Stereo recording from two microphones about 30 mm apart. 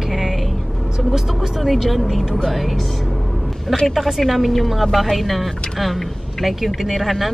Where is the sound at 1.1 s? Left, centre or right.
Centre.